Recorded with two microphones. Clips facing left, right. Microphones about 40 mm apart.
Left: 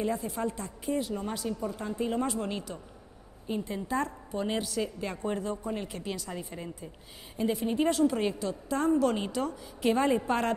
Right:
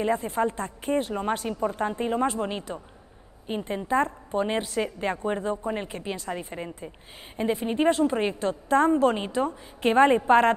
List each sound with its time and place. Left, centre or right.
0.0 s a woman's voice: right